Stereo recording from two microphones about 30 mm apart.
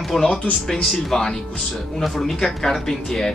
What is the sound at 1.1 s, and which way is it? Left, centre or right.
Speech, centre.